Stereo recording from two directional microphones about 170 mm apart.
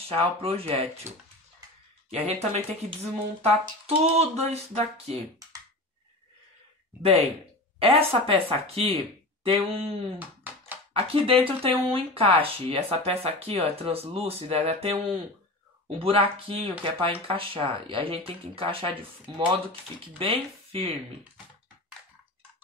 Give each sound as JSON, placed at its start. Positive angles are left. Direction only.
{"t": 0.1, "sound": "speech", "side_deg": -35}
{"t": 2.0, "sound": "speech", "side_deg": -40}
{"t": 7.0, "sound": "speech", "side_deg": -35}